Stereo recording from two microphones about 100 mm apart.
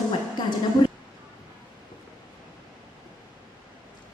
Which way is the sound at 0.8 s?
55° left (ahead or behind).